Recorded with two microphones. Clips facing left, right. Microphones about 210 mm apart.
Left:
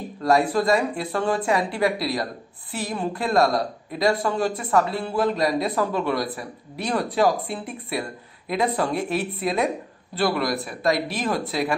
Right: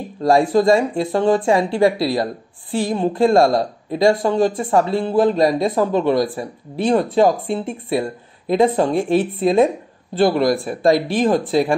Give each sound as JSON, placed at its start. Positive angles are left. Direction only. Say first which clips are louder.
{"t": 0.2, "sound": "speech", "louder": "right 6 dB", "side_deg": -25}
{"t": 10.7, "sound": "speech", "louder": "right 7 dB", "side_deg": -30}